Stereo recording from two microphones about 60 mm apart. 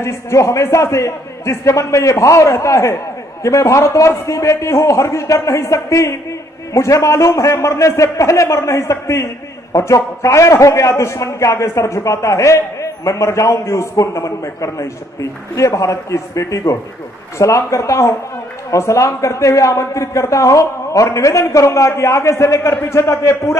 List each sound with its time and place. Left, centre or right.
0.0 s a man's voice: left